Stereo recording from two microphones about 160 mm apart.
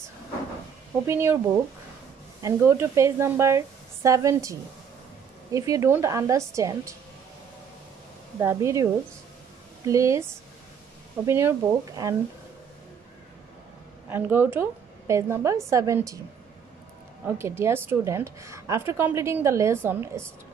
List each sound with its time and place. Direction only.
1.0 s a woman's voice: 15° right (ahead or behind)
8.4 s a woman's voice: 20° right (ahead or behind)
9.8 s a woman's voice: 20° right (ahead or behind)
11.2 s a woman's voice: 15° right (ahead or behind)
14.0 s a woman's voice: 15° right (ahead or behind)
17.4 s a woman's voice: 15° right (ahead or behind)